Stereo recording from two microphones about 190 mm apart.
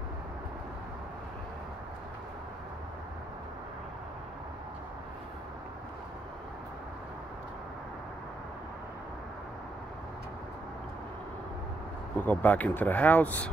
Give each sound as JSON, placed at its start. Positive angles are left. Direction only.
{"t": 12.2, "sound": "speech", "side_deg": 10}